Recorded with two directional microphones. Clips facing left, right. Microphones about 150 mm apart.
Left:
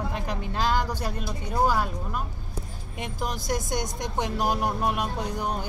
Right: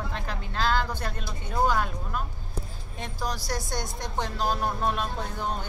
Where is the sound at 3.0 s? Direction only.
20° left (ahead or behind).